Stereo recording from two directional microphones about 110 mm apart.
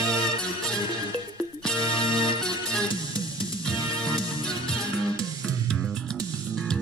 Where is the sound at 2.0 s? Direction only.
30° right (ahead or behind).